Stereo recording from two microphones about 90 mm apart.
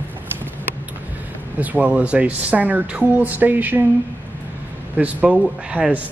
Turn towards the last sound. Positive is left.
turn(degrees=-10)  # may be behind; listen again after turning